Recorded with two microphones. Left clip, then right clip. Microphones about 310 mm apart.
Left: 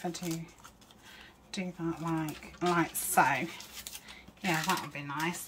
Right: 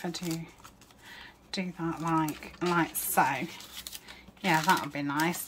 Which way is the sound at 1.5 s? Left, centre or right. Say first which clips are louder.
Right 2 dB; centre.